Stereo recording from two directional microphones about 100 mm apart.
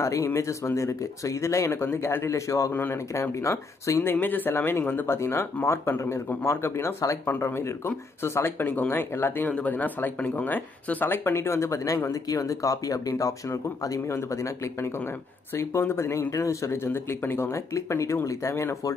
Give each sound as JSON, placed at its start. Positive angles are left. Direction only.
{"t": 0.0, "sound": "speech", "side_deg": 30}